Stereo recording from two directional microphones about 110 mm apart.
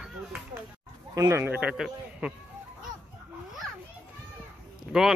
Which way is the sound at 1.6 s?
10° right (ahead or behind).